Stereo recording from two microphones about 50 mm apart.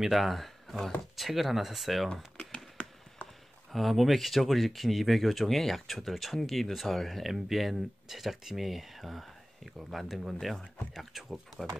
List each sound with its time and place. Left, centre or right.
0.0 s speech: centre
2.3 s a sound: centre
3.7 s speech: centre